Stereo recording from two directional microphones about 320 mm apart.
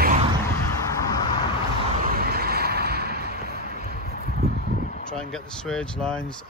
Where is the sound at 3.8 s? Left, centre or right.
Right.